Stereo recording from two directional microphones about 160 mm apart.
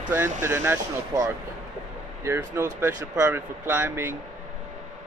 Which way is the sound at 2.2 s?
15° right (ahead or behind).